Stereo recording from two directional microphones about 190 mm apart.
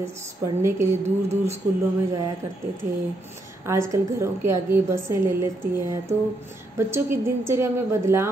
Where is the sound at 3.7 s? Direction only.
15° right (ahead or behind).